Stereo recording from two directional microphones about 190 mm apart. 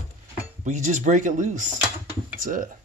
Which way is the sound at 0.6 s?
40° right (ahead or behind).